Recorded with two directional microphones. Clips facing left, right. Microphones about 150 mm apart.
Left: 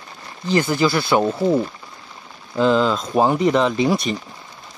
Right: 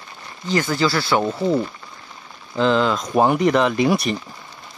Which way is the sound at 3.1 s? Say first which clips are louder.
Even; 10° right (ahead or behind).